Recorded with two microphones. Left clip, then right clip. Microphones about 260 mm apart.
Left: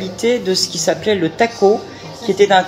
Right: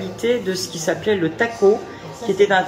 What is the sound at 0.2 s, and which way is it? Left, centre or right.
Speech, left.